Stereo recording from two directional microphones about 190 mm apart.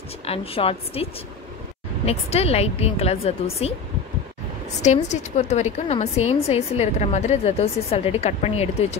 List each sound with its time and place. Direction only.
0.3 s a woman's voice: 30° left (ahead or behind)
2.0 s a woman's voice: 30° left (ahead or behind)
4.8 s a woman's voice: 40° left (ahead or behind)